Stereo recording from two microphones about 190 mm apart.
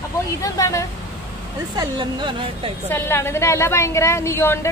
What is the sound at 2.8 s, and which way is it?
A woman's voice, 10° left (ahead or behind).